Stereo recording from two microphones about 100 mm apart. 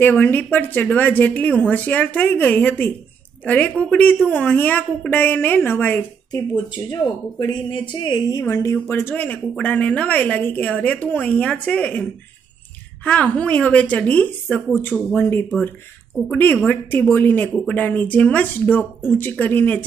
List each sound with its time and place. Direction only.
0.0 s a woman's voice: 20° left (ahead or behind)
6.5 s speech: 40° left (ahead or behind)
8.7 s a woman's voice: 25° left (ahead or behind)
13.0 s a woman's voice: 15° left (ahead or behind)
15.0 s speech: 5° left (ahead or behind)
15.2 s a woman's voice: 20° left (ahead or behind)